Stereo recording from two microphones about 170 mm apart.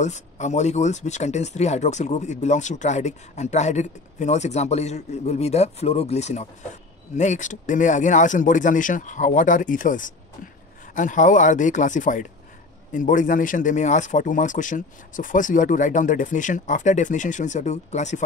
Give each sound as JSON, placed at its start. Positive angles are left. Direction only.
{"t": 0.0, "sound": "speech", "side_deg": 45}